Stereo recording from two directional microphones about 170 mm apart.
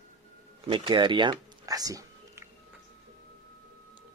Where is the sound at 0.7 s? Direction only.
30° right (ahead or behind).